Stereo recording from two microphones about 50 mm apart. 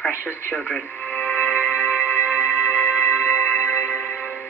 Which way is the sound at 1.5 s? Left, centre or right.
Right.